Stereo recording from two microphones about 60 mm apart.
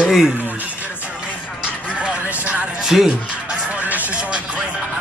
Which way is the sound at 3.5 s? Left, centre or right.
Right.